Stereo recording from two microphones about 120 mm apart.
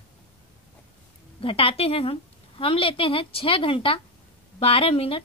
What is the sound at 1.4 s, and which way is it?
A woman's voice, 50° left (ahead or behind).